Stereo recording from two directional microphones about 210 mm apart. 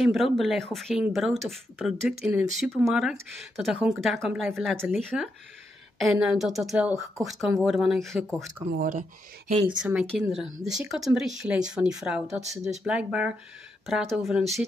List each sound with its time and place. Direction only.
0.0 s speech: centre (ahead or behind)
8.7 s speech: 40° right (ahead or behind)
9.8 s speech: 5° right (ahead or behind)